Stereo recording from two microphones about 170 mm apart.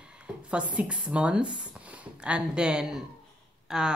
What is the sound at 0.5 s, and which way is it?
Speech, 5° right (ahead or behind).